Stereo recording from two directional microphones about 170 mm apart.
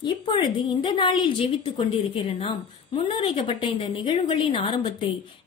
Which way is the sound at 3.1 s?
30° left (ahead or behind).